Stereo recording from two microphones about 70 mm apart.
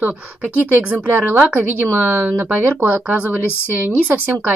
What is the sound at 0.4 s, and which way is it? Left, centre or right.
Speech, centre.